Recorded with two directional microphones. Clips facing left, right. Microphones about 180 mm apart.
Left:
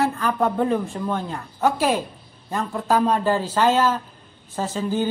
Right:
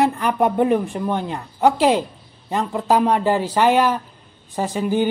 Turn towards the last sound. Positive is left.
turn(degrees=-15)  # may be behind; listen again after turning